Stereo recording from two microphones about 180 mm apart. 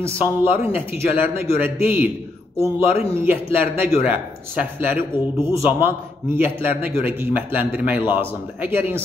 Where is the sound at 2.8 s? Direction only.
30° left (ahead or behind).